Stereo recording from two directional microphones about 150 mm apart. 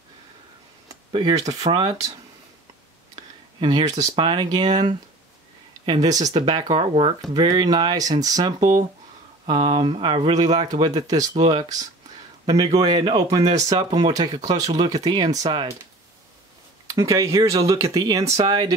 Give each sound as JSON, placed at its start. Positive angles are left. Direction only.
{"t": 0.8, "sound": "speech", "side_deg": -35}
{"t": 3.5, "sound": "speech", "side_deg": -30}
{"t": 5.9, "sound": "speech", "side_deg": -25}
{"t": 16.9, "sound": "speech", "side_deg": -20}